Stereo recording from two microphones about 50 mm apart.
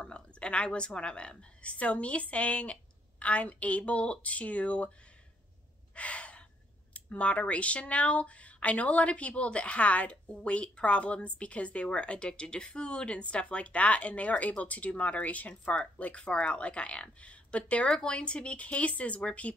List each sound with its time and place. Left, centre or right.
0.0 s a sound: left
0.7 s speech: centre
5.9 s gasp: left
6.9 s speech: left